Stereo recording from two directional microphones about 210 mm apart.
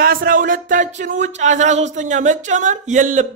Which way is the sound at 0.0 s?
45° right (ahead or behind).